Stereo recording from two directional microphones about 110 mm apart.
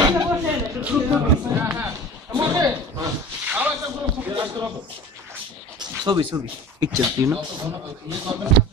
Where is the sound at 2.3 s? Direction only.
40° right (ahead or behind).